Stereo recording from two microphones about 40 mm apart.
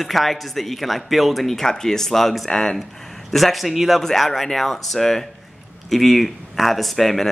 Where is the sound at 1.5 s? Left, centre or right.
Centre.